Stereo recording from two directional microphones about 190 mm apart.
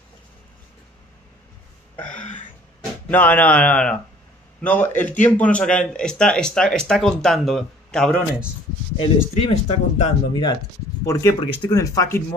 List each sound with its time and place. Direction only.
2.0 s a sound: 5° left (ahead or behind)
3.1 s speech: 10° left (ahead or behind)
9.3 s speech: 35° left (ahead or behind)
10.3 s speech: 20° left (ahead or behind)